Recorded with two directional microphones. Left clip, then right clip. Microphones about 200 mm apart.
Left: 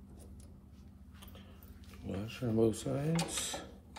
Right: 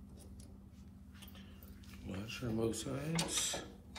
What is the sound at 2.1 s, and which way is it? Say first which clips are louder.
Dishes: left 7 dB; 50° left (ahead or behind).